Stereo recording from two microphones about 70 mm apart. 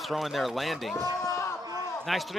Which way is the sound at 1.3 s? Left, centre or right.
Left.